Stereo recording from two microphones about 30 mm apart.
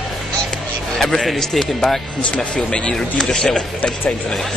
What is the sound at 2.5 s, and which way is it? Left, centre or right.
Speech, left.